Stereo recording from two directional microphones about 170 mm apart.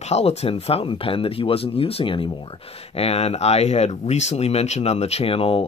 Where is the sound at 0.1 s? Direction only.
40° left (ahead or behind).